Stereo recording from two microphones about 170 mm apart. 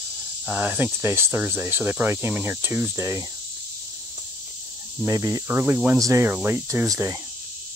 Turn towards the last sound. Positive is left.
turn(degrees=-15)  # may be behind; listen again after turning